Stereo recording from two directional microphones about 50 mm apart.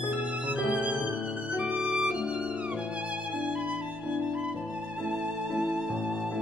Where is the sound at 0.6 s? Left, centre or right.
Right.